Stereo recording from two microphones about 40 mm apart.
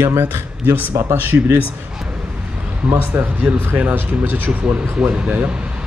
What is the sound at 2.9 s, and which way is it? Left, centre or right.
Speech, right.